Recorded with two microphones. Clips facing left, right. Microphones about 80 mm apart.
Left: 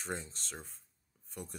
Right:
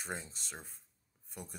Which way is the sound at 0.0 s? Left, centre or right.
Centre.